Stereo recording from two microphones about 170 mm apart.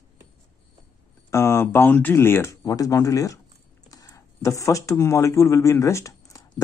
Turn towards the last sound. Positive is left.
turn(degrees=20)  # may be behind; listen again after turning